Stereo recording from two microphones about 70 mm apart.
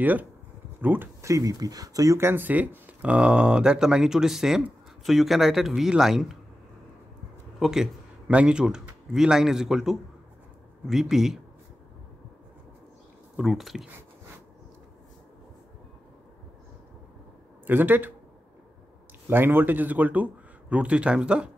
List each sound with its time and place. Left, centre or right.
0.0 s speech: right
1.2 s speech: right
2.1 s speech: right; by 6.3 s centre
7.5 s speech: centre
13.4 s speech: centre
17.6 s speech: right
19.2 s speech: right; by 21.5 s centre